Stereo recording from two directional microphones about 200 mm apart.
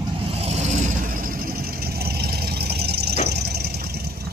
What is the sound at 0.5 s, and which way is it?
Vehicle, 35° right (ahead or behind).